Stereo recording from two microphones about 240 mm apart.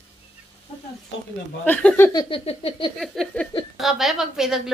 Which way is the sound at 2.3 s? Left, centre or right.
Left.